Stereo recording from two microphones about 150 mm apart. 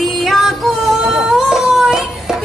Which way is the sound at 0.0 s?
Centre (ahead or behind).